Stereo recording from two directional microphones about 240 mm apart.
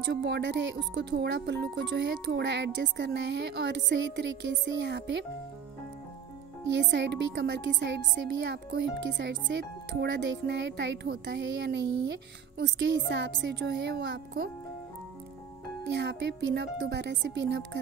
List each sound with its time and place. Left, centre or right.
0.0 s speech: right
6.7 s speech: right
9.1 s speech: right
15.9 s speech: right